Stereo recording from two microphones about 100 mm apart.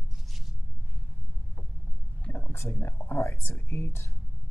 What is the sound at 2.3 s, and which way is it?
Speech, 25° left (ahead or behind).